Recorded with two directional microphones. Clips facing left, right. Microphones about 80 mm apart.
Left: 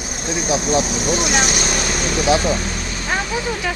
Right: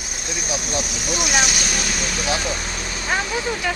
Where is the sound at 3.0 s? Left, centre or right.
Centre.